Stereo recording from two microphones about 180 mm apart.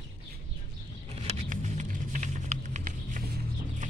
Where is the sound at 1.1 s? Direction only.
35° right (ahead or behind).